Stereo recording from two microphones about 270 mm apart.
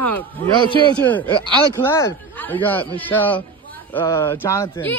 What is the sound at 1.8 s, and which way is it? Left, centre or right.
Speech, centre.